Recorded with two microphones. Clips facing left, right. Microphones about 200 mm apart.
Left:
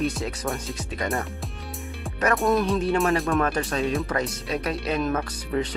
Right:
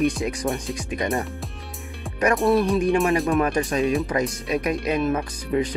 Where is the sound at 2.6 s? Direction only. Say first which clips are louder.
Right 3 dB; 10° right (ahead or behind).